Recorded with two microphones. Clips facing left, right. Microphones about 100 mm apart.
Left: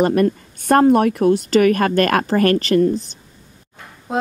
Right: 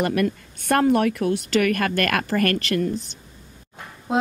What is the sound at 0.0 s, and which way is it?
Speech, 30° left (ahead or behind).